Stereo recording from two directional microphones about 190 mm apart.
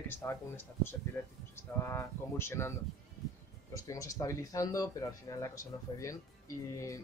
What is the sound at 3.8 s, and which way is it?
Speech, 15° left (ahead or behind).